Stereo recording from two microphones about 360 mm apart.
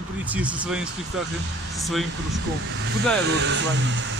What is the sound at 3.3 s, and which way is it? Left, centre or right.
Speech, right.